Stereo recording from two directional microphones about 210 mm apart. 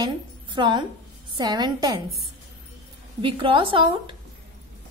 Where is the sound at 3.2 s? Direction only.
25° right (ahead or behind).